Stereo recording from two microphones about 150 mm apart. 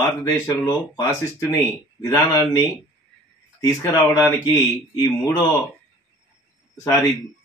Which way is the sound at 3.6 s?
20° left (ahead or behind).